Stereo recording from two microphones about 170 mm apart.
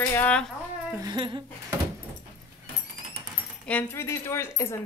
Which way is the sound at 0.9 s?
25° right (ahead or behind).